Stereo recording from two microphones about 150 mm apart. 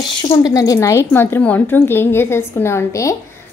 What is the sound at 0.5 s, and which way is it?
A woman's voice, 20° left (ahead or behind).